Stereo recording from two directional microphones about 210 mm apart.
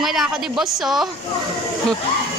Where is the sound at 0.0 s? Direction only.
Centre (ahead or behind).